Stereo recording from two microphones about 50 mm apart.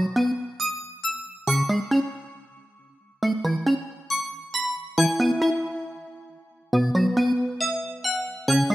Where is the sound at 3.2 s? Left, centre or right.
Centre.